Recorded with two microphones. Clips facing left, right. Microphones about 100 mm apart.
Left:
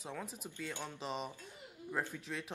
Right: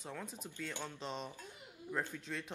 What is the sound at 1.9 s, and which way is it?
Speech, 20° left (ahead or behind).